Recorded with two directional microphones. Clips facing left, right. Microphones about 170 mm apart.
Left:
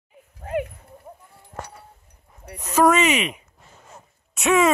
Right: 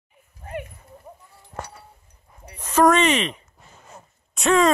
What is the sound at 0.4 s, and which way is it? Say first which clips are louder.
Dog: left 7 dB; 80° left.